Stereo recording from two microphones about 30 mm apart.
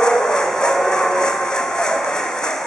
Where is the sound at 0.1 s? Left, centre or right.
Centre.